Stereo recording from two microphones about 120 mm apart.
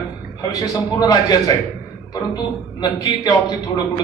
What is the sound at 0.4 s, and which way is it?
A man's voice, 30° left (ahead or behind).